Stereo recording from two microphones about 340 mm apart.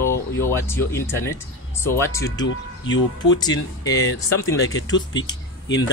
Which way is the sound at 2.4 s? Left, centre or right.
Left.